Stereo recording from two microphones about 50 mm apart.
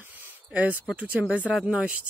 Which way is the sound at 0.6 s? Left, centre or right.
Right.